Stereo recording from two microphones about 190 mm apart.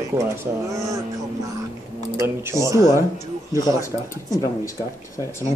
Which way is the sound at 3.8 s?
20° left (ahead or behind).